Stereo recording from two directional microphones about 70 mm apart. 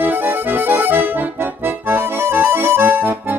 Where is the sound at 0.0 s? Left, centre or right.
Right.